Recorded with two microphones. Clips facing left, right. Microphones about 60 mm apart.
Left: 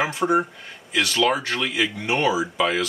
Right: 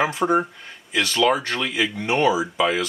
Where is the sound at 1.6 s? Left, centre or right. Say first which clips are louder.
Even; centre.